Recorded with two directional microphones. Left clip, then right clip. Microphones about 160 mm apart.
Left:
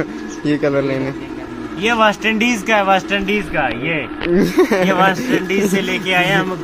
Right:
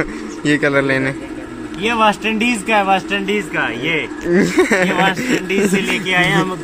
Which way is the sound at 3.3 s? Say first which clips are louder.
Left 1 dB; 55° left (ahead or behind).